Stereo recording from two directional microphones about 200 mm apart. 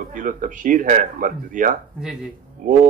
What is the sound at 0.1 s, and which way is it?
A man's voice, 40° right (ahead or behind).